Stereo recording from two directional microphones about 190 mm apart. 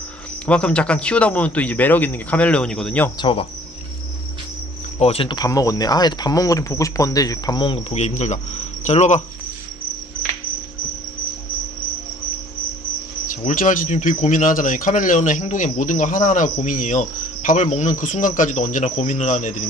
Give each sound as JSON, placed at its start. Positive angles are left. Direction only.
{"t": 0.5, "sound": "a man's voice", "side_deg": 5}
{"t": 3.2, "sound": "speech", "side_deg": 25}
{"t": 4.9, "sound": "speech", "side_deg": 30}
{"t": 8.8, "sound": "cricket", "side_deg": 35}
{"t": 13.5, "sound": "speech", "side_deg": 45}